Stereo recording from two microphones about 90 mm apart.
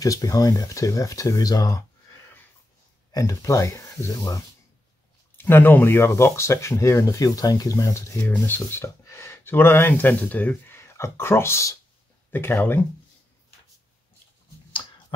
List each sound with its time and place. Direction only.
0.0 s speech: 40° left (ahead or behind)
3.1 s speech: 35° left (ahead or behind)
5.4 s speech: 20° left (ahead or behind)
8.3 s speech: 20° left (ahead or behind)
8.8 s speech: 30° left (ahead or behind); by 10.8 s 15° left (ahead or behind)
10.8 s speech: 30° left (ahead or behind)